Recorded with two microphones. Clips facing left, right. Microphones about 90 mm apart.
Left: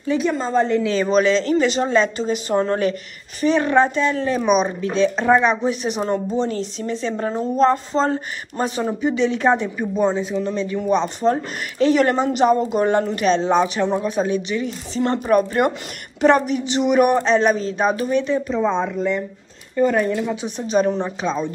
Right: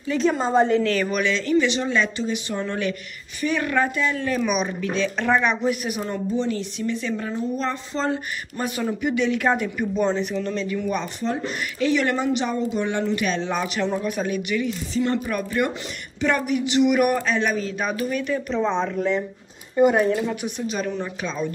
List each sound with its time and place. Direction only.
0.2 s a woman's voice: 5° right (ahead or behind)
0.8 s speech: 25° left (ahead or behind)
1.2 s speech: 35° left (ahead or behind)
13.4 s speech: 30° left (ahead or behind)
18.5 s speech: 10° left (ahead or behind)
19.8 s speech: 10° right (ahead or behind)
20.4 s speech: 35° left (ahead or behind)